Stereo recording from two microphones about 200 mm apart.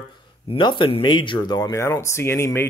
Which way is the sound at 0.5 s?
25° left (ahead or behind).